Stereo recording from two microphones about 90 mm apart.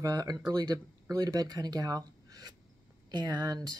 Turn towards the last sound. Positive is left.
turn(degrees=-45)  # may be behind; listen again after turning